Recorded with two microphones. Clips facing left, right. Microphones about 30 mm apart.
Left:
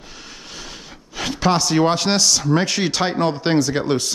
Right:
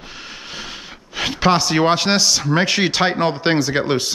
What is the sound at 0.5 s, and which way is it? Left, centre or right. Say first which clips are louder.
Speech: right 4 dB; centre.